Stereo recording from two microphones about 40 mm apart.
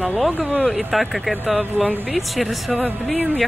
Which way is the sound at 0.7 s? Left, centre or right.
Centre.